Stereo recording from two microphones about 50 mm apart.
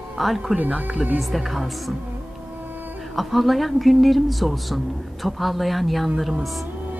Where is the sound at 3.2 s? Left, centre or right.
Centre.